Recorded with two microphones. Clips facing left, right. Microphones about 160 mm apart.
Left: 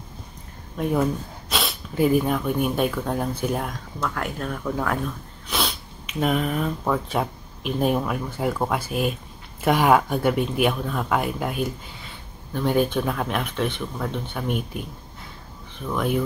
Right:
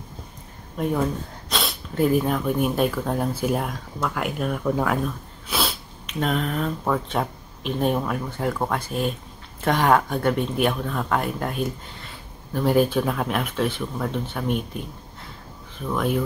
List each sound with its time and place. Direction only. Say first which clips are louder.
1.5 s speech: even; centre (ahead or behind)
15.9 s speech: even; centre (ahead or behind)